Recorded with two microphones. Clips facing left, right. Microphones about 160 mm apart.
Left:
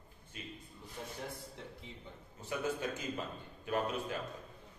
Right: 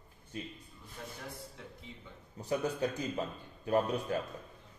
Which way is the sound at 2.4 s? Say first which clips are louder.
Right 4 dB; 40° right (ahead or behind).